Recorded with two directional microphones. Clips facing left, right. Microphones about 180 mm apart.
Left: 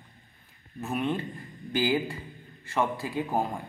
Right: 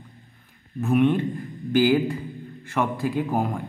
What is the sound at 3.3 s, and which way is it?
Speech, 25° left (ahead or behind).